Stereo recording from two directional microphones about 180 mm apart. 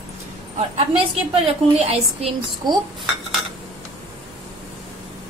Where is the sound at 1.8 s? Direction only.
35° right (ahead or behind).